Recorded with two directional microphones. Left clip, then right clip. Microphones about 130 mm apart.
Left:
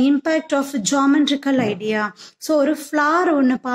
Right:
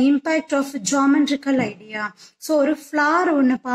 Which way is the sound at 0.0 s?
40° left (ahead or behind).